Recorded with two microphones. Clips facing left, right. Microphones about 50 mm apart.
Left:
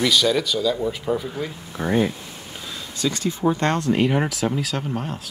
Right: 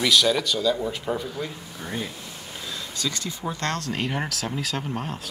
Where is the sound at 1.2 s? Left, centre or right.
Centre.